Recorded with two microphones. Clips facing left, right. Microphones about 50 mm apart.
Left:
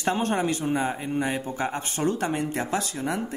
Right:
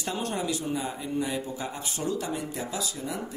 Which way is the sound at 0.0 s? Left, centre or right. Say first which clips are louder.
Left 6 dB; left.